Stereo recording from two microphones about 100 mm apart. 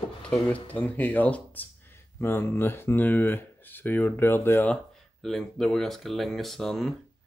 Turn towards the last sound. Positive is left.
turn(degrees=5)  # may be behind; listen again after turning